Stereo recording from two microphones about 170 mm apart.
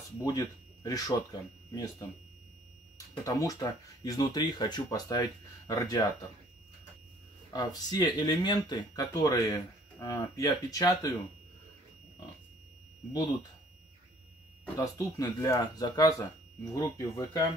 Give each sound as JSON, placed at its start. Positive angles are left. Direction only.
{"t": 0.2, "sound": "speech", "side_deg": 20}
{"t": 3.3, "sound": "speech", "side_deg": 20}
{"t": 7.5, "sound": "speech", "side_deg": 20}
{"t": 14.8, "sound": "speech", "side_deg": 20}